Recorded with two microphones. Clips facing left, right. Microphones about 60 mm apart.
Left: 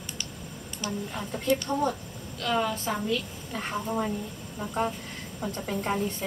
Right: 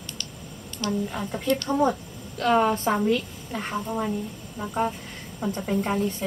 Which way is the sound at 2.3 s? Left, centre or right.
Right.